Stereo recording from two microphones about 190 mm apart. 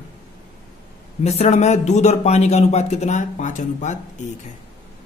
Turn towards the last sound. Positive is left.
turn(degrees=40)  # may be behind; listen again after turning